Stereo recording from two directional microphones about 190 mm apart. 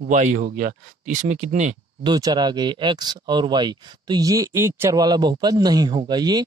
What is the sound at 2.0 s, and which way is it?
Speech, 20° right (ahead or behind).